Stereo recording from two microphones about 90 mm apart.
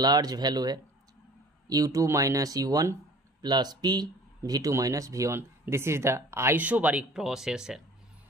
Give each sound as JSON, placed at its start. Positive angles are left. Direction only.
{"t": 0.0, "sound": "speech", "side_deg": -50}
{"t": 3.4, "sound": "speech", "side_deg": -50}
{"t": 6.6, "sound": "speech", "side_deg": -15}
{"t": 7.2, "sound": "speech", "side_deg": -5}